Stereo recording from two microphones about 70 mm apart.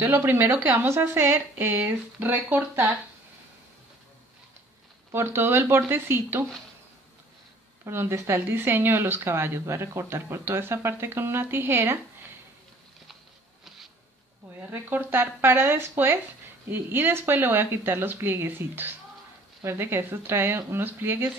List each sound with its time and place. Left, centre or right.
0.0 s speech: right
5.1 s speech: right
7.8 s speech: right
14.7 s speech: right